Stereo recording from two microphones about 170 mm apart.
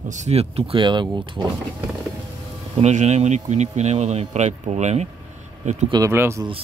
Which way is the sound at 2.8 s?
40° right (ahead or behind).